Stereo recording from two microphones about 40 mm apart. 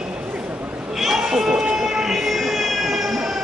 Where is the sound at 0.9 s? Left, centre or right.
Centre.